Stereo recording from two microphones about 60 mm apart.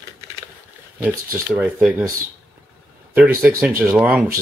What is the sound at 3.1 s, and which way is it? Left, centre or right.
Speech, right.